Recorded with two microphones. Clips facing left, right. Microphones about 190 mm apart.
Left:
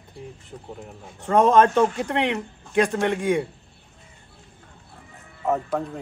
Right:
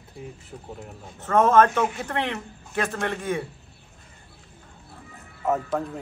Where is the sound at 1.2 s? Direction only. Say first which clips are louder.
Left 1 dB; 15° left (ahead or behind).